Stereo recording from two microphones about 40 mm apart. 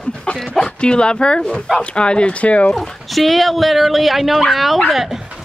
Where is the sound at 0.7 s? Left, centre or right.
Left.